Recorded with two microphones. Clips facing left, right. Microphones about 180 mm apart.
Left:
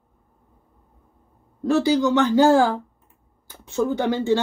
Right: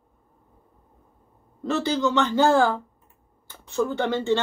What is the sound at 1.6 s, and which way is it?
Speech, 15° left (ahead or behind).